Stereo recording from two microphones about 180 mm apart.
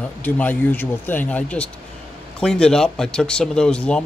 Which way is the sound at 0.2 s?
10° left (ahead or behind).